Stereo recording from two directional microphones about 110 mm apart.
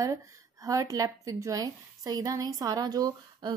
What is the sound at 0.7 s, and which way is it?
A woman's voice, 30° right (ahead or behind).